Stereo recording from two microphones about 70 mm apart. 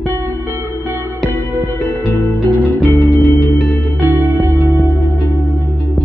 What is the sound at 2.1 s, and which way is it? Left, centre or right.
Music, left.